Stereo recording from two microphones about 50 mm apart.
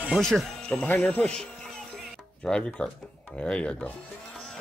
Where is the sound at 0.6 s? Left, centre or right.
Left.